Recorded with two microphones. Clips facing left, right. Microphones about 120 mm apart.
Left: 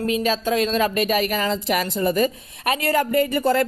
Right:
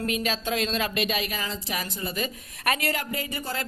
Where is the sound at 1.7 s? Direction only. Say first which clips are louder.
Left 11 dB; 50° left (ahead or behind).